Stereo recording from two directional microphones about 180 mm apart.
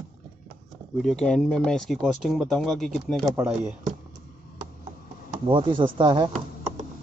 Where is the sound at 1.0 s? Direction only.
5° left (ahead or behind).